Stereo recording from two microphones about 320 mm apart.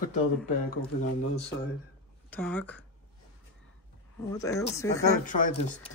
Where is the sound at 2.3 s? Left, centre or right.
Centre.